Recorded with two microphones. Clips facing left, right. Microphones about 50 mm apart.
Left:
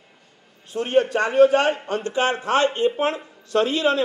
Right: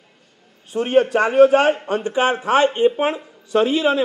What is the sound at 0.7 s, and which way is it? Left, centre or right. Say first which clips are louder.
A man's voice: right 3 dB; centre.